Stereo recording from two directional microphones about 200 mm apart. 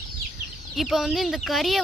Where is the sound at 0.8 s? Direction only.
Centre (ahead or behind).